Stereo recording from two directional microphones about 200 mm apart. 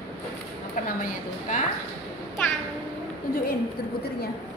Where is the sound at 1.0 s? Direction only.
40° left (ahead or behind).